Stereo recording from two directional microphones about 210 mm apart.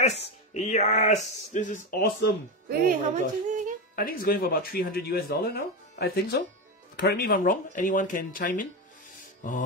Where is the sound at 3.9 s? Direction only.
45° left (ahead or behind).